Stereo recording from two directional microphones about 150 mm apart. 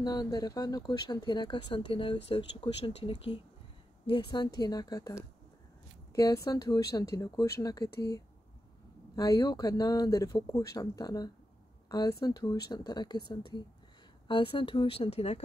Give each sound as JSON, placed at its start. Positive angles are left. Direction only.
{"t": 0.0, "sound": "speech", "side_deg": 25}